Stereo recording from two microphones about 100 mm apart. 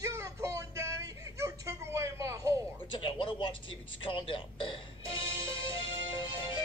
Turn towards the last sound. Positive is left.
turn(degrees=60)  # may be behind; listen again after turning